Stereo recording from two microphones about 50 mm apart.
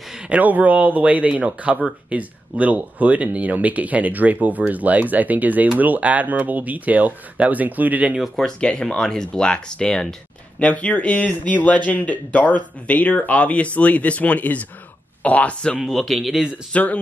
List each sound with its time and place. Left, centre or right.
0.3 s speech: right
8.5 s speech: centre
15.8 s speech: centre
16.7 s speech: left